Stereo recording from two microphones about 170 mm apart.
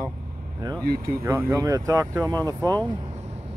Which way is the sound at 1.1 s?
15° right (ahead or behind).